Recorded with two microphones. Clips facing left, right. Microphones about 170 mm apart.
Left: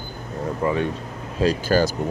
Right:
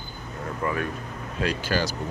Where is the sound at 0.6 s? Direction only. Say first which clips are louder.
Left 5 dB; 25° left (ahead or behind); by 1.9 s 45° left (ahead or behind).